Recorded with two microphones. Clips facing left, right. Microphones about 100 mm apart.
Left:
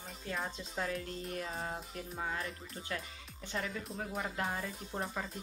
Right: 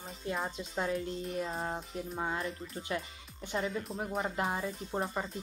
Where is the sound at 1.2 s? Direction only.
Centre (ahead or behind).